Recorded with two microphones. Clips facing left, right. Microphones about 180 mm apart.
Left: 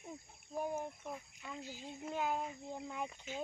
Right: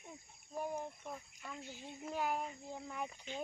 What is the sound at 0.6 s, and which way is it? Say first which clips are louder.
Speech: left 2 dB; 5° left (ahead or behind).